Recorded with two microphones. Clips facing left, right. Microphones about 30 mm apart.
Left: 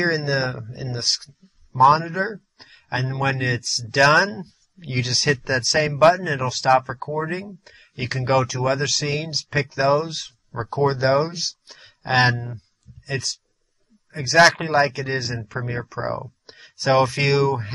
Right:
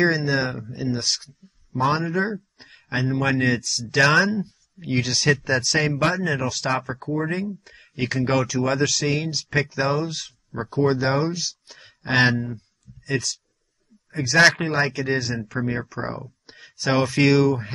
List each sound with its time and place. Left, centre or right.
0.0 s speech: centre
7.2 s speech: centre